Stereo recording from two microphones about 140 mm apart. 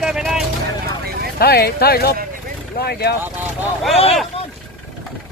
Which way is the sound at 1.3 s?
90° left.